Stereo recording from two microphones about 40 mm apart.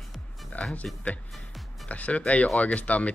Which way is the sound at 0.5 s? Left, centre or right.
Left.